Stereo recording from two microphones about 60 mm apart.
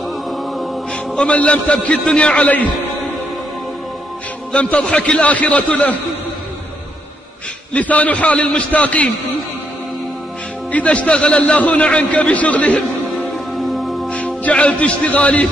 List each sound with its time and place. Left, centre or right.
1.1 s a man's voice: centre
4.5 s a man's voice: centre
7.7 s a man's voice: left
10.7 s a man's voice: left
13.1 s music: centre
14.1 s speech: left